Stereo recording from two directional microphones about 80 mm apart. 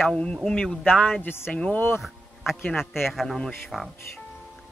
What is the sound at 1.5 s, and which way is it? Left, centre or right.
Speech, centre.